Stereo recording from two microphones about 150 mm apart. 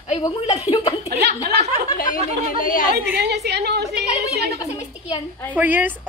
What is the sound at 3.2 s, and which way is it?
Speech, 90° right.